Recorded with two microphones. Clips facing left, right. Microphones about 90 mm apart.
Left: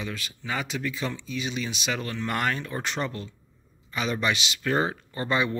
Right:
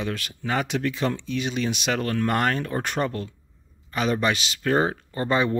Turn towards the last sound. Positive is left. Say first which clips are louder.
# right 3 dB
turn(degrees=-35)  # may be behind; listen again after turning